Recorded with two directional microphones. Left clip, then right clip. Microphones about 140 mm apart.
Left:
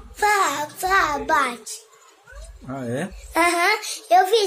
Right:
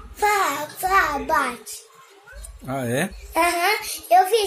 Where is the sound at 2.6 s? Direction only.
35° right (ahead or behind).